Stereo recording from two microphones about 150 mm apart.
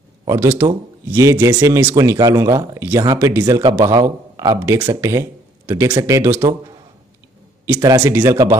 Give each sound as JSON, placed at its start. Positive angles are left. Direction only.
{"t": 0.4, "sound": "speech", "side_deg": -15}
{"t": 8.0, "sound": "speech", "side_deg": -15}